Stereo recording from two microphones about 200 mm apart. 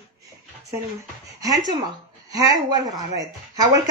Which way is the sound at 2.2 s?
20° right (ahead or behind).